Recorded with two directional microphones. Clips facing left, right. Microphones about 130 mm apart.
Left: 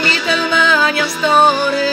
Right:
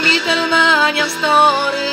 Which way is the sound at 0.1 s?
20° right (ahead or behind).